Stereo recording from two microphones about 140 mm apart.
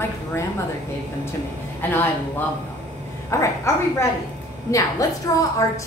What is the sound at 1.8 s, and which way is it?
Speech, 15° left (ahead or behind).